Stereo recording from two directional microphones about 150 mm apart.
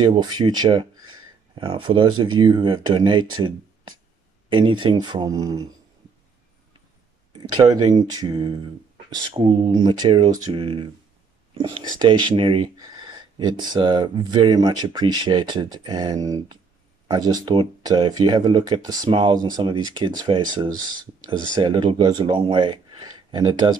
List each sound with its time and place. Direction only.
0.0 s speech: 30° right (ahead or behind)
7.3 s speech: 25° right (ahead or behind)